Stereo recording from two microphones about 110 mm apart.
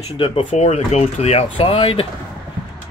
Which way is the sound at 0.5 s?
80° left.